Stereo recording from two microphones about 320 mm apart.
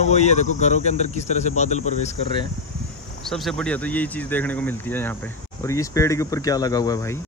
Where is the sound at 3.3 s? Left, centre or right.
Centre.